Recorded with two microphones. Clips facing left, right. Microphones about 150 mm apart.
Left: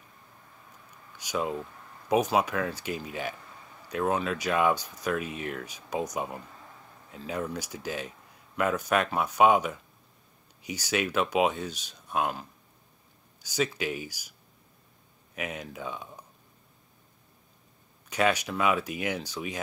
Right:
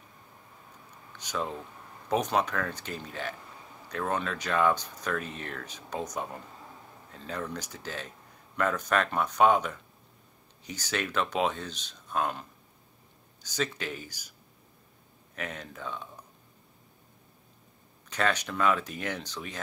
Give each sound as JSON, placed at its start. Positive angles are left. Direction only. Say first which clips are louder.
{"t": 1.1, "sound": "speech", "louder": "left 3 dB", "side_deg": 10}
{"t": 15.3, "sound": "speech", "louder": "left 3 dB", "side_deg": 10}
{"t": 18.1, "sound": "speech", "louder": "left 3 dB", "side_deg": 10}